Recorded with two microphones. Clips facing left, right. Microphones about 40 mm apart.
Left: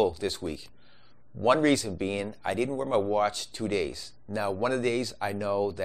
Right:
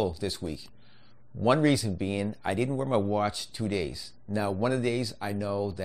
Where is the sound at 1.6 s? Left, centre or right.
Centre.